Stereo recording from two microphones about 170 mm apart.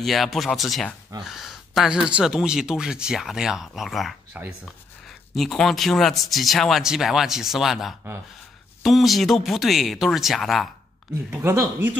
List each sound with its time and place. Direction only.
0.0 s speech: centre (ahead or behind)
5.3 s speech: centre (ahead or behind)
11.2 s speech: 15° right (ahead or behind)